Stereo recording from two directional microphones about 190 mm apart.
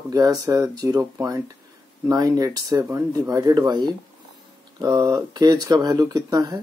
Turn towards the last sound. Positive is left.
turn(degrees=-20)  # may be behind; listen again after turning